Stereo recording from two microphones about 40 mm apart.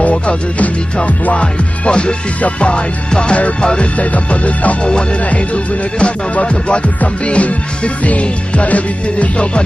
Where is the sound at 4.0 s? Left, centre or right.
Left.